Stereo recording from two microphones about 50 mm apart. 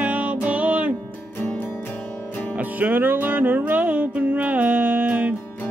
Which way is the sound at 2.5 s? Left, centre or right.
Right.